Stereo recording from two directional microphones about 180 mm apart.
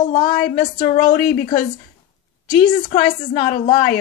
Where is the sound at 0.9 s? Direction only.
45° left (ahead or behind).